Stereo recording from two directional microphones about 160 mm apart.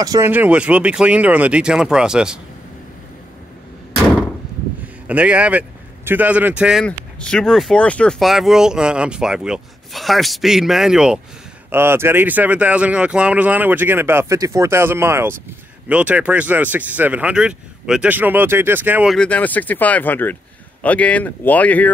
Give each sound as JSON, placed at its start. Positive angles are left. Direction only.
{"t": 0.0, "sound": "speech", "side_deg": -25}
{"t": 0.3, "sound": "speech", "side_deg": -10}
{"t": 5.0, "sound": "speech", "side_deg": -10}
{"t": 6.8, "sound": "speech", "side_deg": 5}
{"t": 11.7, "sound": "speech", "side_deg": -15}
{"t": 19.1, "sound": "speech", "side_deg": 10}